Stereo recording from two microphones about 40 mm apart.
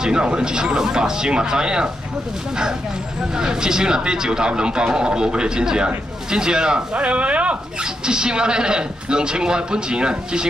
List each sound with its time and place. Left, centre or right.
0.0 s a man's voice: right
3.3 s a man's voice: centre
7.0 s speech: right
7.8 s a man's voice: centre